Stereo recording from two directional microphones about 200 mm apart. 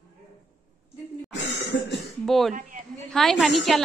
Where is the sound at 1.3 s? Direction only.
60° left (ahead or behind).